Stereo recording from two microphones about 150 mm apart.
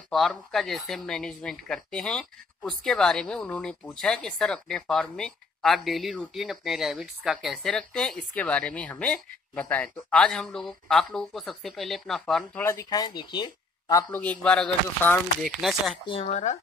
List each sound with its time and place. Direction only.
0.1 s speech: centre (ahead or behind)
12.6 s speech: 25° left (ahead or behind)
14.2 s speech: 5° left (ahead or behind)
16.1 s speech: 45° left (ahead or behind)